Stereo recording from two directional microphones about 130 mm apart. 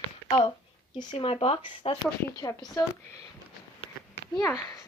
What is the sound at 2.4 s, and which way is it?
Speech, 25° left (ahead or behind).